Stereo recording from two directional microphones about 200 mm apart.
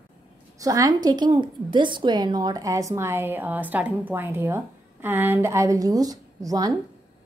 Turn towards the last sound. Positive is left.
turn(degrees=-20)  # may be behind; listen again after turning